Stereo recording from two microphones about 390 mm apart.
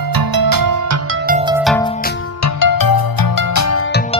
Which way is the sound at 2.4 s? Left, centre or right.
Left.